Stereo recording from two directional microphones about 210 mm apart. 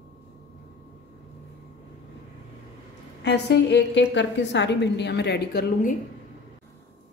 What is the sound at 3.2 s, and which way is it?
A woman's voice, 55° left (ahead or behind).